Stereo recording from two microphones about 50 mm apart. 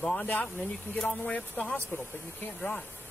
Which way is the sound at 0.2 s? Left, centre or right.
Left.